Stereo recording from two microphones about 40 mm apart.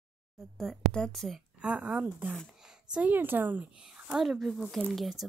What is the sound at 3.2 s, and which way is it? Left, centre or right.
Speech, right.